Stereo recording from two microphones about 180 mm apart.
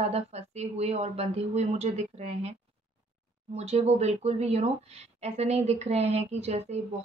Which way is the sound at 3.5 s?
35° right (ahead or behind).